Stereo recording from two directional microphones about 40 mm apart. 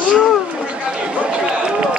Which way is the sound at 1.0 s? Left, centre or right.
Right.